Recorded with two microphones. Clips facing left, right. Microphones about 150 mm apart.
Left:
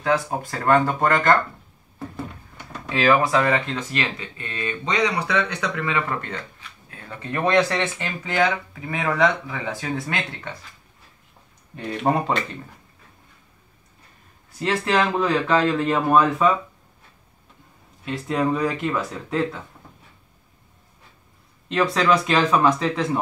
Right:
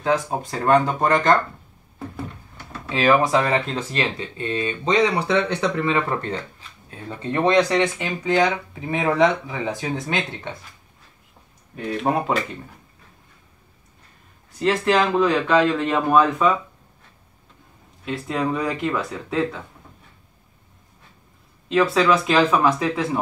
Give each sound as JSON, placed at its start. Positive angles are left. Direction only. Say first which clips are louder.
{"t": 0.0, "sound": "speech", "louder": "right 1 dB", "side_deg": -20}
{"t": 2.9, "sound": "speech", "louder": "right 1 dB", "side_deg": -20}
{"t": 11.7, "sound": "speech", "louder": "even", "side_deg": 0}
{"t": 14.6, "sound": "speech", "louder": "right 2 dB", "side_deg": 0}
{"t": 18.0, "sound": "speech", "louder": "left 1 dB", "side_deg": 0}
{"t": 21.6, "sound": "speech", "louder": "right 2 dB", "side_deg": 0}